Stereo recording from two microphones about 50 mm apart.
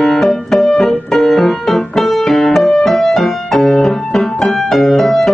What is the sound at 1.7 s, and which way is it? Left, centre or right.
Music, centre.